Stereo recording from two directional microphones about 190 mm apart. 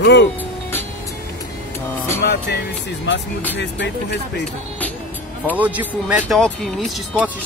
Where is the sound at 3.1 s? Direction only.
65° left (ahead or behind).